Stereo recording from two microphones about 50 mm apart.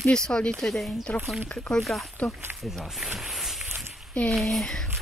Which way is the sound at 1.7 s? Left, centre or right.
Centre.